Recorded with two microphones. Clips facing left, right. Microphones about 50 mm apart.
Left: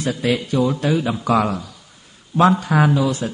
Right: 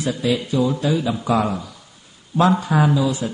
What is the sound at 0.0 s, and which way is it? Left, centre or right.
Speech, left.